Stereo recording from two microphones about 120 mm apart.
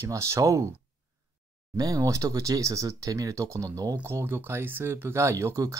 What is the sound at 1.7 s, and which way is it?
Speech, 30° right (ahead or behind).